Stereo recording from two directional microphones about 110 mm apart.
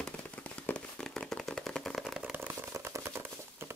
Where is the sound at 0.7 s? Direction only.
10° left (ahead or behind).